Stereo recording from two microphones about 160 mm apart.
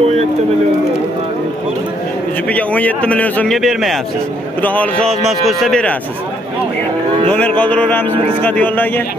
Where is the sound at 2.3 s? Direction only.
10° left (ahead or behind).